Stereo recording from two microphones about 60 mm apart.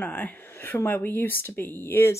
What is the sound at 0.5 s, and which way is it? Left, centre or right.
Speech, left.